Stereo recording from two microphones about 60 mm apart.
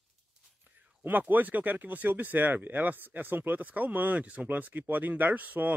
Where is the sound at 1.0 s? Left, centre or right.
Right.